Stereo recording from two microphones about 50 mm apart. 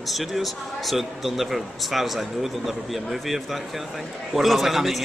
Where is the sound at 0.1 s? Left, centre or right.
Centre.